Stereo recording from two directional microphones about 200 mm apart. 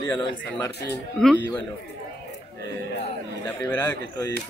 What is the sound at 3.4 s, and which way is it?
Speech, 10° left (ahead or behind).